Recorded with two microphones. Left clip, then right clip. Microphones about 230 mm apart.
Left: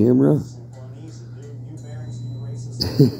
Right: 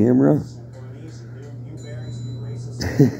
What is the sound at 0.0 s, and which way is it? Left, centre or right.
Speech, left.